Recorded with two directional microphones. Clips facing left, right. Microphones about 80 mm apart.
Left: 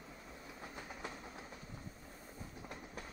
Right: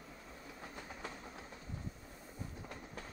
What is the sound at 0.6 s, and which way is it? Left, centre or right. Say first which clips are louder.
Train: even; centre.